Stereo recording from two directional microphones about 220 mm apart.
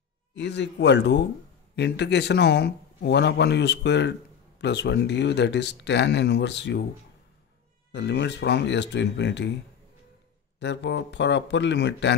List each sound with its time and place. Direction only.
0.4 s speech: 50° left (ahead or behind)
7.9 s speech: 50° left (ahead or behind)
10.6 s speech: 50° left (ahead or behind)